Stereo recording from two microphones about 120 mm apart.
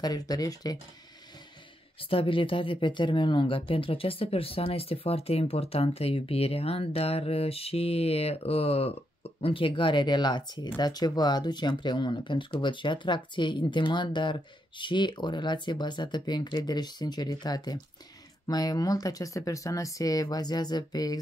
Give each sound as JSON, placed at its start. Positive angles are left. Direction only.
{"t": 0.0, "sound": "speech", "side_deg": 30}
{"t": 2.0, "sound": "speech", "side_deg": 50}